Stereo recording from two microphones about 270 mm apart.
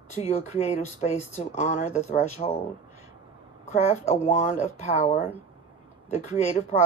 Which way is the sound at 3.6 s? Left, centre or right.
Left.